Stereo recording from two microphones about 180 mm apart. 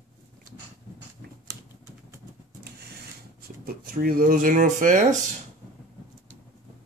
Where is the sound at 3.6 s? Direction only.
55° right (ahead or behind).